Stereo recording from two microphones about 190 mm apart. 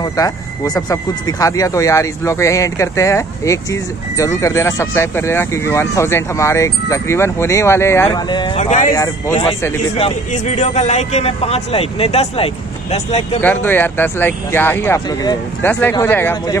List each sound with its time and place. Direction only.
0.0 s speech: 20° left (ahead or behind)
8.5 s a man's voice: 40° left (ahead or behind)
13.4 s speech: 10° left (ahead or behind)